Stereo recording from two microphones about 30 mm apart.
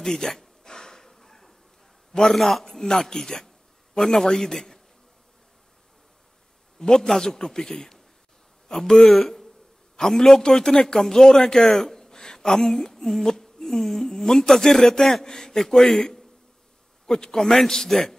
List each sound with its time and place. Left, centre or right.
0.0 s speech: centre
0.7 s a sound: left
2.3 s a man's voice: centre
2.6 s a man's voice: centre
6.8 s a man's voice: centre
9.9 s a man's voice: centre
15.2 s a man's voice: left